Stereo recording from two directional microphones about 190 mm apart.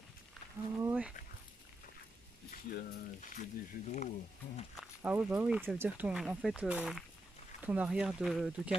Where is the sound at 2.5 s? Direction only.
50° left (ahead or behind).